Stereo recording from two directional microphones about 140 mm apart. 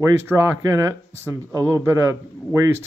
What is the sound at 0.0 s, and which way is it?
A man's voice, 15° right (ahead or behind).